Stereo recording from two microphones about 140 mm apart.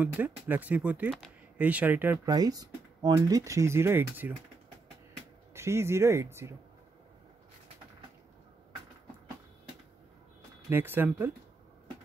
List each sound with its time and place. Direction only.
0.0 s speech: 10° right (ahead or behind)
2.2 s speech: 25° right (ahead or behind)
5.5 s speech: 20° right (ahead or behind)
10.7 s speech: 15° right (ahead or behind)